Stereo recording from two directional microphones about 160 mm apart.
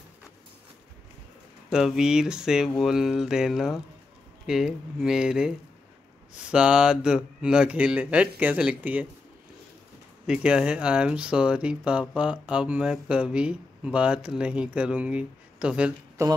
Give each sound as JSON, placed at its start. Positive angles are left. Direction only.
{"t": 1.7, "sound": "speech", "side_deg": -5}
{"t": 6.5, "sound": "speech", "side_deg": -5}
{"t": 10.2, "sound": "speech", "side_deg": -5}
{"t": 16.2, "sound": "speech", "side_deg": -20}